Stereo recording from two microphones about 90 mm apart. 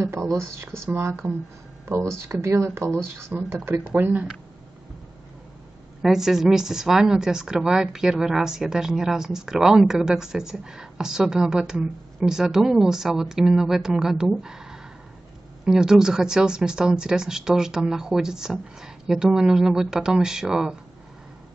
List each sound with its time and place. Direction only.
1.2 s a woman's voice: 30° right (ahead or behind)
6.0 s a woman's voice: 5° right (ahead or behind)